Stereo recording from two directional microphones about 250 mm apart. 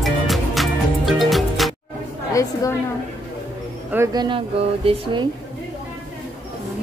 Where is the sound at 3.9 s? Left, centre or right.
Centre.